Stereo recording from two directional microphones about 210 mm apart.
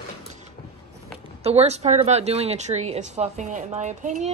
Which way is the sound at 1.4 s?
30° right (ahead or behind).